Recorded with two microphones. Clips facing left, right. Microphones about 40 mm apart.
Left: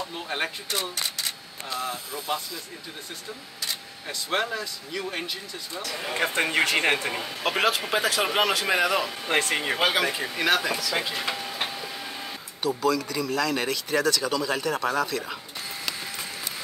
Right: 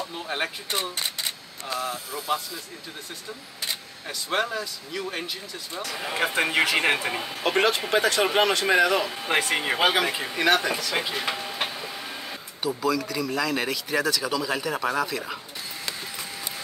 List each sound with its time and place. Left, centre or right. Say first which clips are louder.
0.1 s a sound: right 1 dB; centre
0.7 s speech: right 2 dB; right
1.0 s single-lens reflex camera: right 1 dB; right
4.1 s a man's voice: right 1 dB; centre
9.2 s speech: right 1 dB; centre
12.6 s a man's voice: left 1 dB; centre